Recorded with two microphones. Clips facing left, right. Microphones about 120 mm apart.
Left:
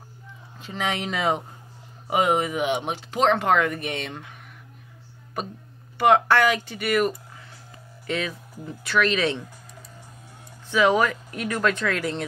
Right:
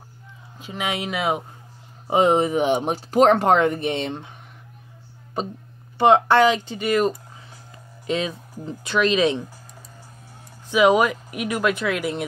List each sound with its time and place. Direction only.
0.6 s speech: 10° right (ahead or behind)
2.0 s speech: 30° right (ahead or behind)
5.9 s speech: 25° right (ahead or behind)
10.7 s speech: 15° right (ahead or behind)